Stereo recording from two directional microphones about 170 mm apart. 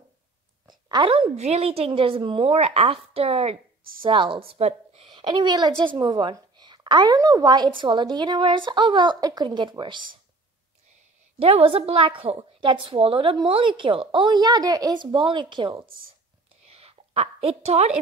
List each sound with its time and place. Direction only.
0.8 s a woman's voice: 30° right (ahead or behind)
11.3 s a woman's voice: 35° right (ahead or behind)
16.7 s a sound: 35° right (ahead or behind)